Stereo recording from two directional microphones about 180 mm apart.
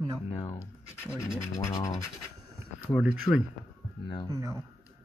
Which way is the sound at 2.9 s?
5° right (ahead or behind).